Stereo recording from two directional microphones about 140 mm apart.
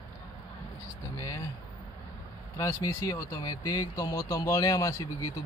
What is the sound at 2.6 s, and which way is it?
Speech, 25° left (ahead or behind).